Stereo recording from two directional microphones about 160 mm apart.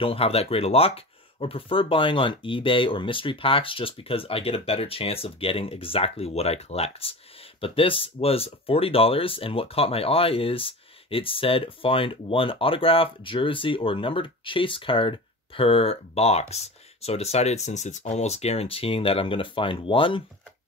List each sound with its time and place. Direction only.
0.0 s speech: 35° left (ahead or behind)